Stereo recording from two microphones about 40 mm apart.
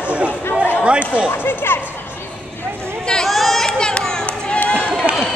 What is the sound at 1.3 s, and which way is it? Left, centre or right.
Speech, left.